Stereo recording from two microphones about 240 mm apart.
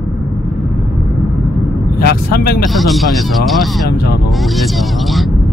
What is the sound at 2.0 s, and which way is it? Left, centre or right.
Speech, left.